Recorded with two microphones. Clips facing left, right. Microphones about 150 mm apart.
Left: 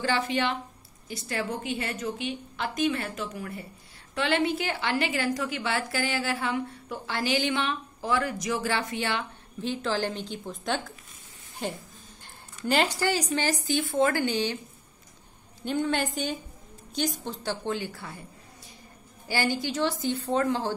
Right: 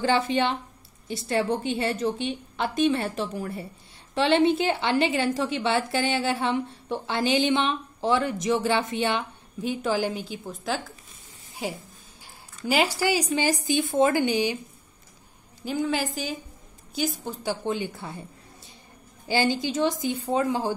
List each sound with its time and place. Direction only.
0.0 s a woman's voice: 25° right (ahead or behind)
15.6 s a woman's voice: 5° right (ahead or behind); by 18.2 s 20° right (ahead or behind)
19.2 s a woman's voice: 20° right (ahead or behind)